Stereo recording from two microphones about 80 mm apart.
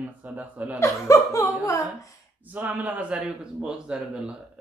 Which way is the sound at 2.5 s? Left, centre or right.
Centre.